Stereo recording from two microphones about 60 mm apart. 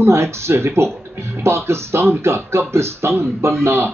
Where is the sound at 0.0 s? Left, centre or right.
Right.